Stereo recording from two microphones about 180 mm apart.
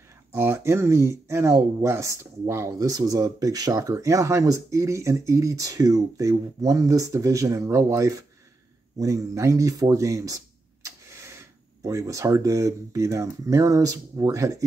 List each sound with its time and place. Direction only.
0.3 s speech: 15° right (ahead or behind)